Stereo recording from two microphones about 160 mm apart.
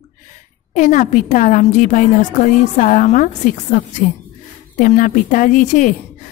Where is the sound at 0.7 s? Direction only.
50° left (ahead or behind).